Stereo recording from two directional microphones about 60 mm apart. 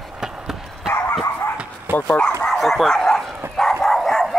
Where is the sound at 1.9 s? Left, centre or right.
Right.